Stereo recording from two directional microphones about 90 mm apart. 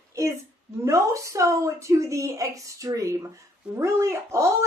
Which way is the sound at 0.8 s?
35° right (ahead or behind).